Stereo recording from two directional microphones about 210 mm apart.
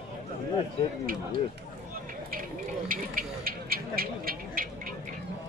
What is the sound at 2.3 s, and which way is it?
Speech, 40° right (ahead or behind).